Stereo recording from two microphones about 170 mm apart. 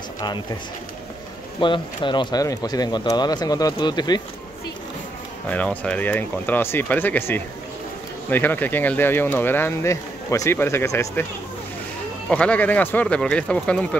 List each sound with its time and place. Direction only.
1.6 s speech: 30° left (ahead or behind)
5.5 s speech: 10° left (ahead or behind)
12.3 s speech: 5° left (ahead or behind)